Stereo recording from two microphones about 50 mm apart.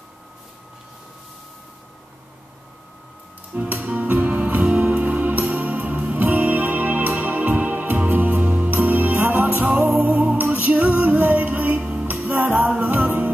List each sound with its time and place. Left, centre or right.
3.5 s music: right
12.1 s music: right